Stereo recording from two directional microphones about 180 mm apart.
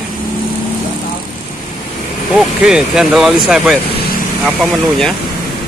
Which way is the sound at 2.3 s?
5° right (ahead or behind).